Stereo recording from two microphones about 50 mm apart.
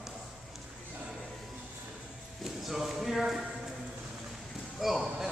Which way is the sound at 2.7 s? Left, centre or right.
Centre.